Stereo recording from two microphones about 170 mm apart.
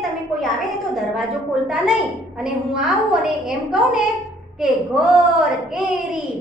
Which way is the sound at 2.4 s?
5° right (ahead or behind).